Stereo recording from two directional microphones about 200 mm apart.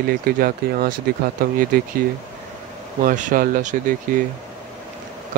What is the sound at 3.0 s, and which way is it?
Speech, 40° right (ahead or behind).